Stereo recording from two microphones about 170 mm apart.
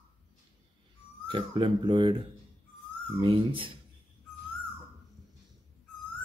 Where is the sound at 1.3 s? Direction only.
30° right (ahead or behind).